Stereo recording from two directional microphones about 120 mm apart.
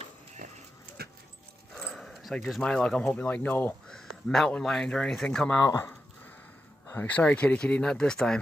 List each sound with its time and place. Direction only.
1.8 s speech: centre (ahead or behind)
3.9 s speech: 5° left (ahead or behind)
5.6 s speech: 25° left (ahead or behind)
6.9 s speech: 15° left (ahead or behind)